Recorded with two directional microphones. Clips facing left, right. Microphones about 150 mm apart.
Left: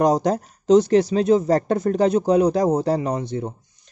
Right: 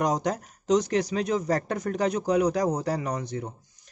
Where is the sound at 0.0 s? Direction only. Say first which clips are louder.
Left 8 dB; 30° left (ahead or behind).